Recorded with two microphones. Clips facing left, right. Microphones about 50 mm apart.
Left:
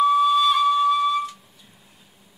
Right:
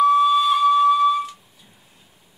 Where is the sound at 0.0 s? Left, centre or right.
Centre.